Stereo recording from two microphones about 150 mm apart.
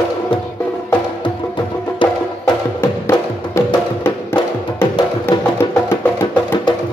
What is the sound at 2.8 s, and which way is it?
Music, 15° left (ahead or behind).